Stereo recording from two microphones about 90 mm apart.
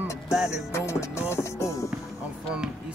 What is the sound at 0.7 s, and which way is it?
Speech, 30° left (ahead or behind).